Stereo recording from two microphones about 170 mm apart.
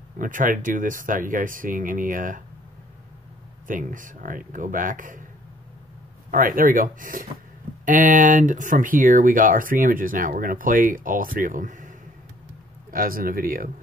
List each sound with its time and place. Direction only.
0.2 s speech: 50° right (ahead or behind)
3.6 s speech: 50° right (ahead or behind)
6.3 s speech: 55° right (ahead or behind)
12.9 s speech: 55° right (ahead or behind)